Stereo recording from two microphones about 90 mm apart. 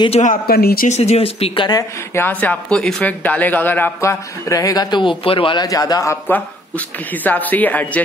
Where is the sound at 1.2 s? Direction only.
90° left.